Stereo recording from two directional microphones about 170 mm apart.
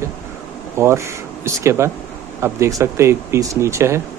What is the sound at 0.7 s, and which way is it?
Speech, 15° right (ahead or behind).